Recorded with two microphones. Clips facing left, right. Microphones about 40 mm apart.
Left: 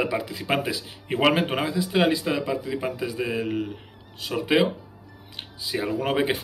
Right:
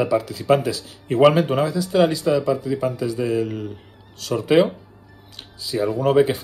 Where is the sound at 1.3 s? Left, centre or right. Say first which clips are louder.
Right 4 dB; left.